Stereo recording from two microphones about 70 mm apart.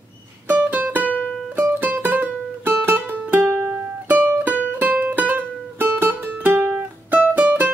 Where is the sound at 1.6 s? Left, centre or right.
Right.